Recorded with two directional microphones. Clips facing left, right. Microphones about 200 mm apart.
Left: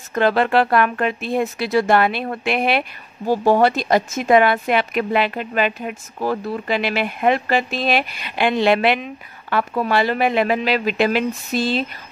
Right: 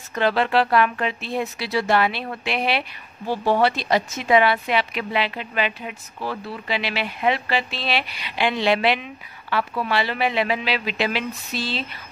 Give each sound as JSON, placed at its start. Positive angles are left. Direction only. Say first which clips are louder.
{"t": 0.1, "sound": "a woman's voice", "louder": "left 4 dB", "side_deg": 50}